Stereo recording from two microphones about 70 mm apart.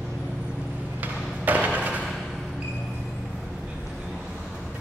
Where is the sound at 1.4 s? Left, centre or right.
Right.